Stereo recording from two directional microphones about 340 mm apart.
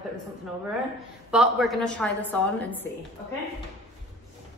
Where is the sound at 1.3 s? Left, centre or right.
Centre.